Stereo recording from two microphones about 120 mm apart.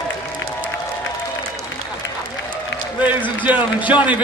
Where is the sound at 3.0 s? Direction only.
15° right (ahead or behind).